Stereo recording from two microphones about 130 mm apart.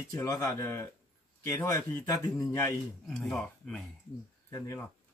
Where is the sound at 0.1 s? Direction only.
25° left (ahead or behind).